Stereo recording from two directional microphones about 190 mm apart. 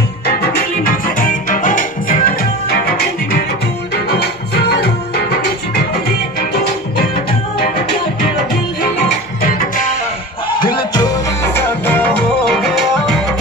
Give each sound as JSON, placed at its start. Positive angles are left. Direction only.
{"t": 0.4, "sound": "music", "side_deg": 45}
{"t": 9.4, "sound": "music", "side_deg": 50}
{"t": 10.6, "sound": "music", "side_deg": 20}
{"t": 12.4, "sound": "music", "side_deg": 0}